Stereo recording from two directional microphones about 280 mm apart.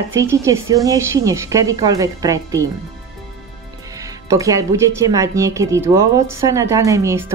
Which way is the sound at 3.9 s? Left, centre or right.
Centre.